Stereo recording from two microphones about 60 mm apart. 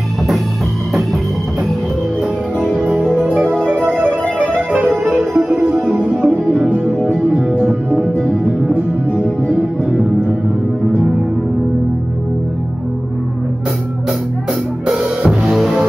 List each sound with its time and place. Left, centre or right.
2.8 s music: right
6.9 s music: left
9.1 s music: left
14.9 s music: centre